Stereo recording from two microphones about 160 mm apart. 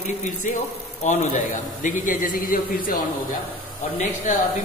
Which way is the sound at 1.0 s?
50° left (ahead or behind).